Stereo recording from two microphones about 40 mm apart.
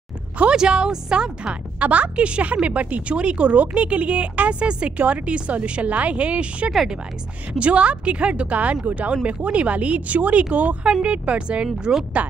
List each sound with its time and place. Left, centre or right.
0.5 s speech: right
1.8 s speech: right
12.2 s speech: right